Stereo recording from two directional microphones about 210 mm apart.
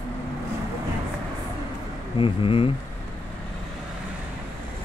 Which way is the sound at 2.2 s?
25° left (ahead or behind).